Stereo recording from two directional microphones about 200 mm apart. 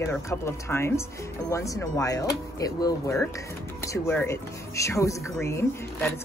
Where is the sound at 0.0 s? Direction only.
15° left (ahead or behind).